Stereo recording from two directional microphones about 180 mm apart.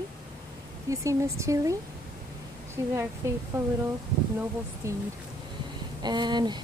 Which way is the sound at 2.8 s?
15° right (ahead or behind).